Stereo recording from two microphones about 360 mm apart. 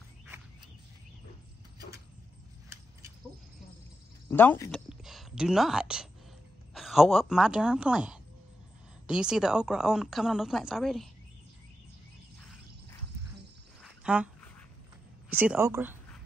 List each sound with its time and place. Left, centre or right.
4.3 s a woman's voice: centre
13.8 s a sound: centre
15.2 s speech: centre